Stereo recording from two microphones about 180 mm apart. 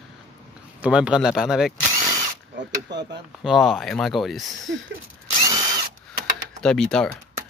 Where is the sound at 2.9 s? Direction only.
75° right (ahead or behind).